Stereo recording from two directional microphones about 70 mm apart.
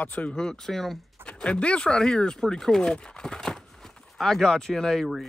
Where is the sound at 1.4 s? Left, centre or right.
Centre.